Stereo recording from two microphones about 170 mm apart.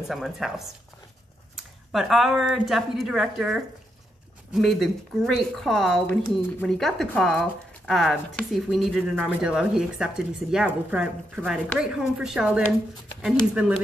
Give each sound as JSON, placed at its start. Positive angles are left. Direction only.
{"t": 0.1, "sound": "speech", "side_deg": 0}